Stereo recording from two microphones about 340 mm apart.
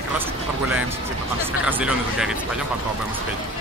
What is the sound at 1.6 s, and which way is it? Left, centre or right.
Speech, centre.